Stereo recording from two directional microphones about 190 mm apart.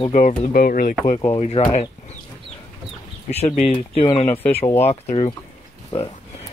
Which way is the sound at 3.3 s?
35° left (ahead or behind).